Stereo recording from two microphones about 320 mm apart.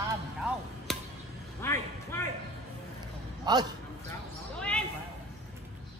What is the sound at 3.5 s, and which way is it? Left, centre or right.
Speech, centre.